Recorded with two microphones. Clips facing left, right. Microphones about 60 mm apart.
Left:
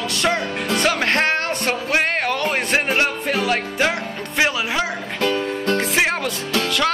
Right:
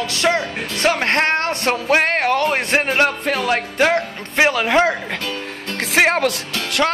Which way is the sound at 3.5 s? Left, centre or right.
Right.